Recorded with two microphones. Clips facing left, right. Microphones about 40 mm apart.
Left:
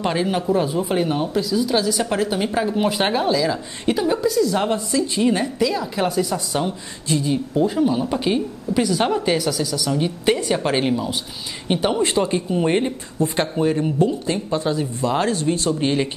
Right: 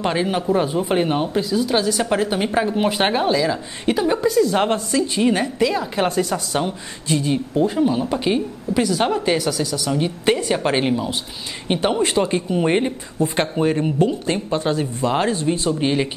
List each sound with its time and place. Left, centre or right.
0.0 s speech: centre
4.2 s a woman's voice: right
7.5 s speech: centre
13.2 s a woman's voice: right
13.9 s speech: right
14.3 s a woman's voice: right
15.8 s speech: centre